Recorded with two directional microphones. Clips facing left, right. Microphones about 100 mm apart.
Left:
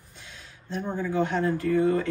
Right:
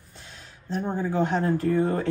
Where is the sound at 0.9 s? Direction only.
45° right (ahead or behind).